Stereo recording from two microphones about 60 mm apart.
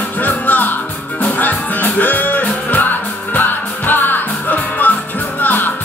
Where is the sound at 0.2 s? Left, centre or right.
Left.